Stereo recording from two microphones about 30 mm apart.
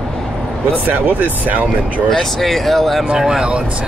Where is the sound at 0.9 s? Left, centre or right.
Right.